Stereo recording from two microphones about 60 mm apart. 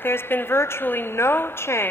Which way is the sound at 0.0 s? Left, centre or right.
Left.